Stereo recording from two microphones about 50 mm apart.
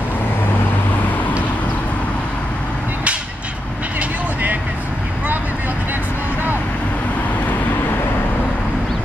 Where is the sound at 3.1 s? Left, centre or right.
Right.